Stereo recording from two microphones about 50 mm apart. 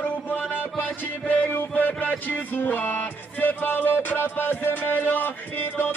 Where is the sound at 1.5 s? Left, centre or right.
Left.